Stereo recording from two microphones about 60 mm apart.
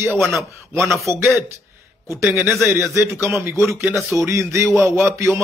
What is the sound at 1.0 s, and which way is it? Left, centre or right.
Speech, right.